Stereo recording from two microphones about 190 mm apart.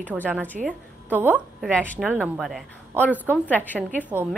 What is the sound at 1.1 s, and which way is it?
A woman's voice, 10° right (ahead or behind).